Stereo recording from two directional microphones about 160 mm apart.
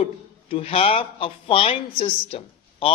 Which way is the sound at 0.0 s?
35° left (ahead or behind).